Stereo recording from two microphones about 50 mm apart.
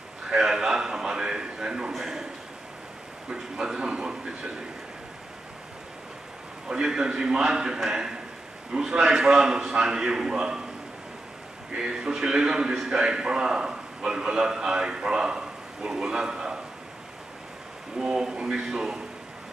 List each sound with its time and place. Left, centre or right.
0.3 s a sound: centre
3.3 s a man's voice: centre
6.7 s a man's voice: centre
11.7 s a man's voice: centre
17.9 s a man's voice: centre